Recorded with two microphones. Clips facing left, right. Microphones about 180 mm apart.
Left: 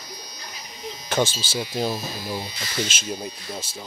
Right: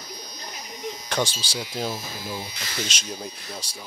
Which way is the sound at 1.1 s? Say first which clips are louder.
Left 4 dB; 5° left (ahead or behind).